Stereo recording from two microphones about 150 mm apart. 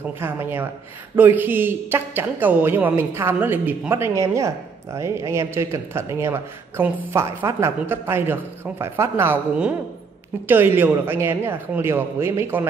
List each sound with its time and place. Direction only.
0.2 s a man's voice: 15° right (ahead or behind)